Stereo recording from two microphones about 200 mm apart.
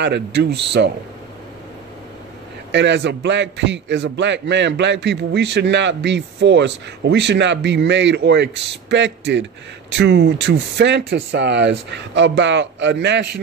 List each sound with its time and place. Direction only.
0.0 s a man's voice: 60° right (ahead or behind)
2.7 s a man's voice: 60° right (ahead or behind)